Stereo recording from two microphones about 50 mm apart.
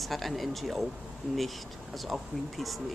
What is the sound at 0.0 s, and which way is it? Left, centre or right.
Speech, centre.